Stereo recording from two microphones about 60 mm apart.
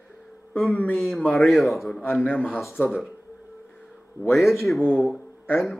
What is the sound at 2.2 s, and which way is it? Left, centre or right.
Speech, left.